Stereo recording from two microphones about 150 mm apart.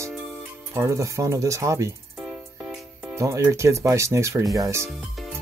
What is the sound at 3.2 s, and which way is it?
Speech, 20° right (ahead or behind).